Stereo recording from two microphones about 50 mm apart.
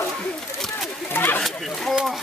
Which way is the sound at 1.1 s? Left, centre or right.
Left.